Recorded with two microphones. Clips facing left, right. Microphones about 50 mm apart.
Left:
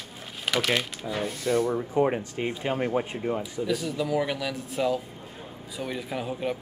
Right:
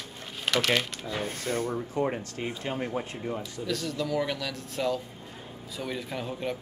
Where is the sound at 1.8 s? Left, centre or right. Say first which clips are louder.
Left 5 dB; centre.